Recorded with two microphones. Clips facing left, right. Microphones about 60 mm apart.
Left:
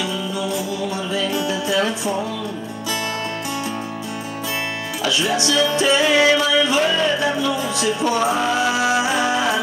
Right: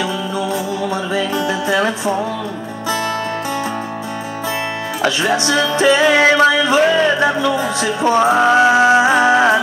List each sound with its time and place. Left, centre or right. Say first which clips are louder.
0.0 s music: right 4 dB; right
5.0 s music: right 4 dB; right